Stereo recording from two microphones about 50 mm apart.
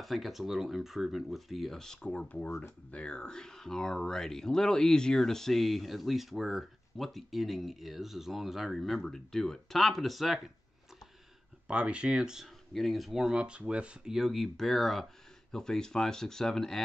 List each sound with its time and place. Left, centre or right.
0.0 s speech: centre
1.8 s speech: centre
2.0 s speech: left; by 10.5 s centre
11.6 s speech: centre
12.7 s speech: centre; by 13.9 s right
14.0 s speech: centre